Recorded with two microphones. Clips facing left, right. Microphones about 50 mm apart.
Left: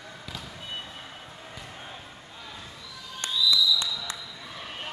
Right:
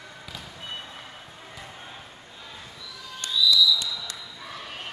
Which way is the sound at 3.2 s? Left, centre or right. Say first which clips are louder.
Right 3 dB; left.